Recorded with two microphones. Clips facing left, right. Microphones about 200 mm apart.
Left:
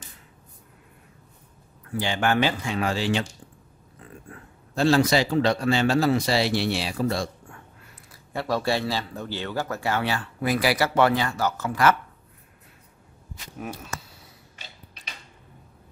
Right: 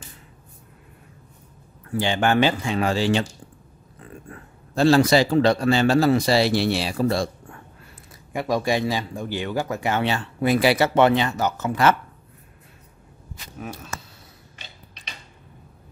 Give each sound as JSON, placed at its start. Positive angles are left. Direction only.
{"t": 2.0, "sound": "speech", "side_deg": -25}
{"t": 4.7, "sound": "a man's voice", "side_deg": -35}
{"t": 8.3, "sound": "speech", "side_deg": -15}
{"t": 13.6, "sound": "speech", "side_deg": 5}